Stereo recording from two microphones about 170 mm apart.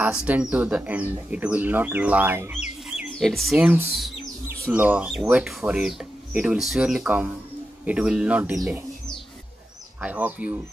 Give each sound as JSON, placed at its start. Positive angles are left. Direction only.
{"t": 0.0, "sound": "speech", "side_deg": -10}
{"t": 3.0, "sound": "speech", "side_deg": 0}
{"t": 9.9, "sound": "speech", "side_deg": -10}